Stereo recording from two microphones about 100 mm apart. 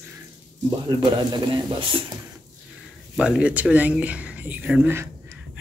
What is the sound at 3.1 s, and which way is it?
Speech, 10° right (ahead or behind).